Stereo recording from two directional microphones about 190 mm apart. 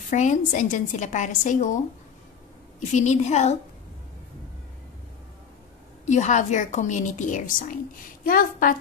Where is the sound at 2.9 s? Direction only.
35° left (ahead or behind).